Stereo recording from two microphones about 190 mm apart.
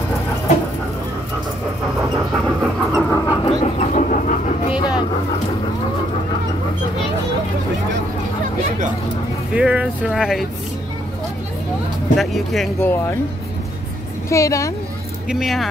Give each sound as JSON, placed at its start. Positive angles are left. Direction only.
{"t": 2.3, "sound": "vehicle", "side_deg": 0}
{"t": 3.1, "sound": "vehicle", "side_deg": 20}
{"t": 3.6, "sound": "pant", "side_deg": 40}
{"t": 4.6, "sound": "vehicle", "side_deg": 25}
{"t": 9.5, "sound": "speech", "side_deg": -5}
{"t": 12.2, "sound": "speech", "side_deg": 0}
{"t": 12.8, "sound": "speech", "side_deg": 10}
{"t": 14.3, "sound": "speech", "side_deg": 15}
{"t": 15.2, "sound": "speech", "side_deg": 0}